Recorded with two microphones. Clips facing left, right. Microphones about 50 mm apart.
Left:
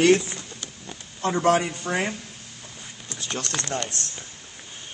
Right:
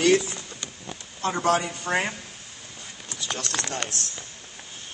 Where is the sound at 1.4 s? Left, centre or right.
Left.